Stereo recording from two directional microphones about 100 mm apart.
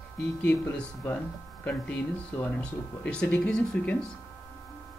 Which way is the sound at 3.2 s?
10° left (ahead or behind).